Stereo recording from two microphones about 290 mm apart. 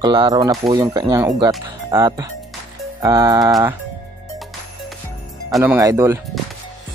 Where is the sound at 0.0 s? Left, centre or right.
Centre.